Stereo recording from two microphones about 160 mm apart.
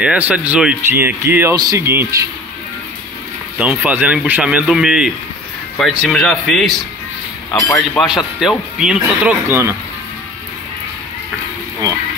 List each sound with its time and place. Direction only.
0.0 s speech: 10° right (ahead or behind)
3.5 s speech: 10° right (ahead or behind)
7.5 s speech: 20° left (ahead or behind)
8.4 s speech: 5° right (ahead or behind)